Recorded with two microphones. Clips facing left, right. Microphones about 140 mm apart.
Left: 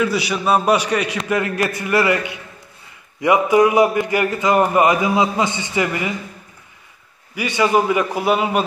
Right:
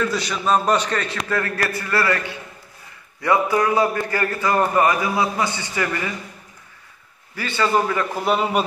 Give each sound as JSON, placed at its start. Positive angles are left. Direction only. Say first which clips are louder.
{"t": 0.0, "sound": "a man's voice", "louder": "left 3 dB", "side_deg": 10}
{"t": 7.3, "sound": "a man's voice", "louder": "left 3 dB", "side_deg": 15}